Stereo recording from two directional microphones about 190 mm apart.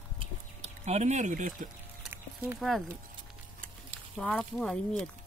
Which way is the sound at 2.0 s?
10° right (ahead or behind).